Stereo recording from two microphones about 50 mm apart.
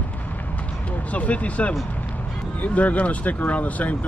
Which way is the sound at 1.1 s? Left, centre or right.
Left.